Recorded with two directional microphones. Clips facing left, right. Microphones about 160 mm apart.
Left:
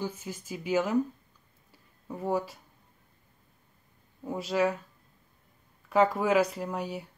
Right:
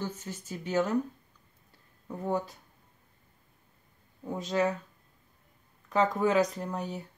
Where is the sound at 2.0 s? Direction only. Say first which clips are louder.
Left 1 dB; 10° left (ahead or behind).